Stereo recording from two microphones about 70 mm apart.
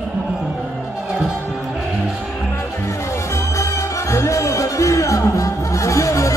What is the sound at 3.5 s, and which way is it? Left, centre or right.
Music, left.